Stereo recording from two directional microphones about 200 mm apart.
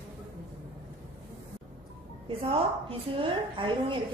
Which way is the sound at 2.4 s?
30° right (ahead or behind).